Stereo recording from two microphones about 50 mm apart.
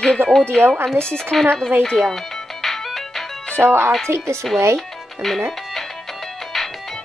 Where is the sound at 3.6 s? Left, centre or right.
Right.